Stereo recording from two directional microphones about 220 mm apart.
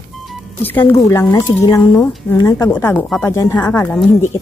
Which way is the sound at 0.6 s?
10° left (ahead or behind).